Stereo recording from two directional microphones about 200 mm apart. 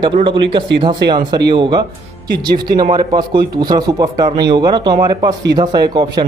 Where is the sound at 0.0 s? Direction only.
25° right (ahead or behind).